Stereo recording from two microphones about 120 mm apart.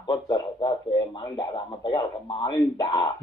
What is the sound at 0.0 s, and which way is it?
A man's voice, 40° left (ahead or behind).